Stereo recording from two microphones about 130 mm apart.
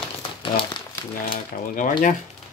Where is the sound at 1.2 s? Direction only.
90° left.